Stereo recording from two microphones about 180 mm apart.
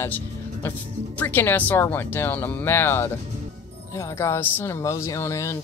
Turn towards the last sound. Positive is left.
turn(degrees=15)  # may be behind; listen again after turning